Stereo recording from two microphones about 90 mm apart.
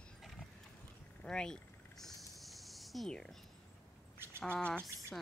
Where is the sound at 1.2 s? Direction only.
10° left (ahead or behind).